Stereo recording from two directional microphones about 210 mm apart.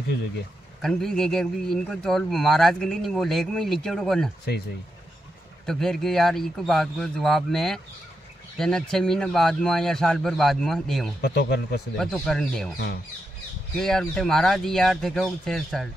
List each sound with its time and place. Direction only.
0.8 s speech: centre (ahead or behind)
5.7 s speech: centre (ahead or behind)
11.1 s speech: 50° left (ahead or behind)
12.0 s speech: centre (ahead or behind)
12.7 s speech: 50° left (ahead or behind)
13.7 s speech: 5° left (ahead or behind)